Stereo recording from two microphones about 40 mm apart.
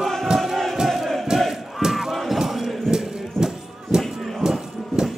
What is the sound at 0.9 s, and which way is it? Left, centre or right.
Crowd, centre.